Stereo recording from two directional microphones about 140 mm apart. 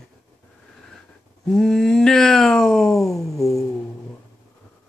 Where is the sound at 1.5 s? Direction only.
Centre (ahead or behind).